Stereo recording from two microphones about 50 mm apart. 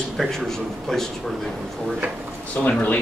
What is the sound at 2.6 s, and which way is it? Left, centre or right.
Speech, left.